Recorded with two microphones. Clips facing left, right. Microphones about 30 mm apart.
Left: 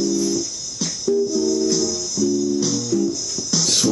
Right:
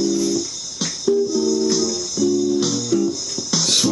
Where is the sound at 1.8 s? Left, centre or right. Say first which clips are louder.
Right 1 dB; right.